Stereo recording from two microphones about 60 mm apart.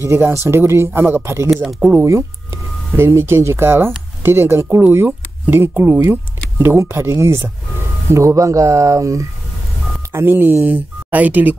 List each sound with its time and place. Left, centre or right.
0.0 s speech: right
4.8 s speech: right
6.8 s speech: right
10.1 s speech: right